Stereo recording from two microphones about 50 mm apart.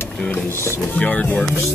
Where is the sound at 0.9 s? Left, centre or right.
Left.